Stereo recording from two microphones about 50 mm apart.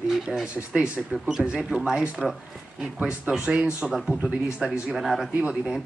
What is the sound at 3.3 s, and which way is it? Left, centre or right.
Speech, centre.